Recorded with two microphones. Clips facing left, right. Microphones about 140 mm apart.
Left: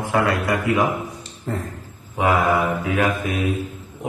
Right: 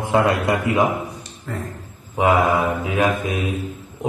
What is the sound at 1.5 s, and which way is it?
Speech, 30° left (ahead or behind).